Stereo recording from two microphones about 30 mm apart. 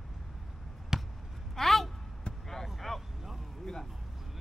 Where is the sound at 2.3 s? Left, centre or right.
Left.